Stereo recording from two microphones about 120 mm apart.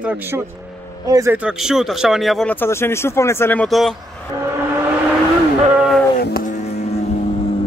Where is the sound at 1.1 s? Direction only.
30° right (ahead or behind).